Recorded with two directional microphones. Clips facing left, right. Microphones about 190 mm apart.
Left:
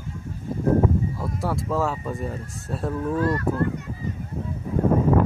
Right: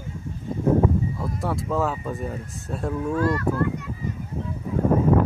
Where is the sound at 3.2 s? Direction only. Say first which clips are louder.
Right 1 dB; 30° left (ahead or behind).